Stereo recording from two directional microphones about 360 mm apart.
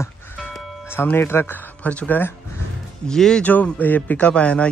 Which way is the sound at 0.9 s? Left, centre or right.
Centre.